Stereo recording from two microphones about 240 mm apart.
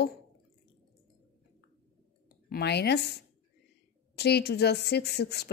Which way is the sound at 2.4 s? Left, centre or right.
Left.